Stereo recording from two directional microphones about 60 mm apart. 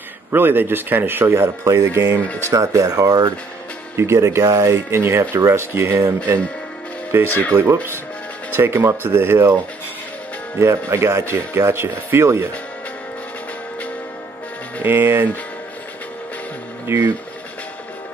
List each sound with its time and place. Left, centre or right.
0.3 s speech: right
2.5 s speech: right
3.9 s speech: right
10.6 s speech: right
14.9 s speech: right
16.9 s speech: right